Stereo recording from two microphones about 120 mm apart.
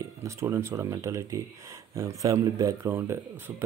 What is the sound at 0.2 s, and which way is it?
Speech, 20° right (ahead or behind).